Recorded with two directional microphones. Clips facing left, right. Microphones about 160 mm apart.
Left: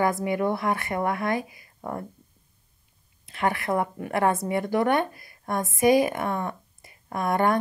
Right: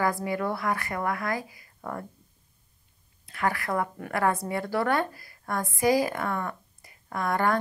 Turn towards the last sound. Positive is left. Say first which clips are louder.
# left 3 dB
turn(degrees=20)  # may be behind; listen again after turning